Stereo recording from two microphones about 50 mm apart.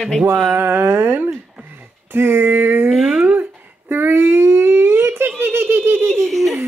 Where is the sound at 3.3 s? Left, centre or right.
Right.